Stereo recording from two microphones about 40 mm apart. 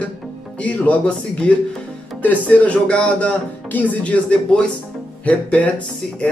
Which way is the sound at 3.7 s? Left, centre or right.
Left.